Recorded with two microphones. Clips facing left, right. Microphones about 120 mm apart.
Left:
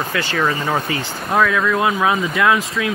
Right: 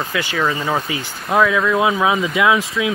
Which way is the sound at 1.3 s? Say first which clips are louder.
Right 1 dB; 20° right (ahead or behind).